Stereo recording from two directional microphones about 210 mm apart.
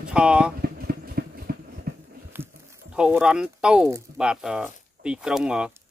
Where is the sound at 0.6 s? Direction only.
45° right (ahead or behind).